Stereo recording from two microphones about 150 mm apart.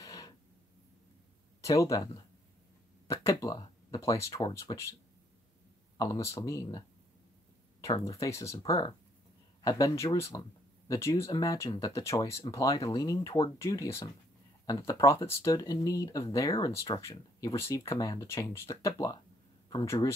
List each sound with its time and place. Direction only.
0.0 s a sound: 25° left (ahead or behind)
1.6 s speech: 20° left (ahead or behind)
5.9 s speech: 25° left (ahead or behind)
7.8 s speech: 20° left (ahead or behind)